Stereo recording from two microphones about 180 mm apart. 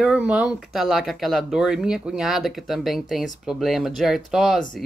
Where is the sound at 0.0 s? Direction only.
5° right (ahead or behind).